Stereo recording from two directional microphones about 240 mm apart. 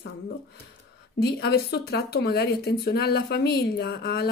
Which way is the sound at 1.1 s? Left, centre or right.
Left.